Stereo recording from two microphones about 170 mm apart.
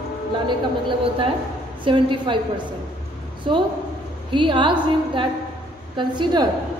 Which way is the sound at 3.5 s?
30° right (ahead or behind).